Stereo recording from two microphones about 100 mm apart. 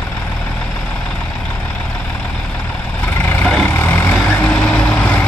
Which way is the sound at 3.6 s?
20° left (ahead or behind).